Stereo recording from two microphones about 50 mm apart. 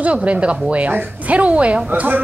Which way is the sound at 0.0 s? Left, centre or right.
Right.